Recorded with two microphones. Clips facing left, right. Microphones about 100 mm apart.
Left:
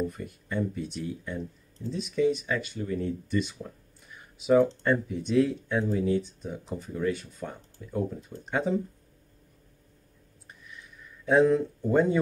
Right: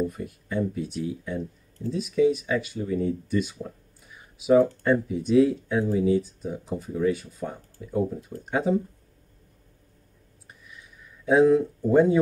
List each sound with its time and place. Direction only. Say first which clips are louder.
0.0 s speech: right 3 dB; 5° right (ahead or behind)
5.8 s speech: right 3 dB; 15° right (ahead or behind)
6.0 s speech: right 4 dB; 5° right (ahead or behind)
10.7 s a sound: left 1 dB; 5° right (ahead or behind)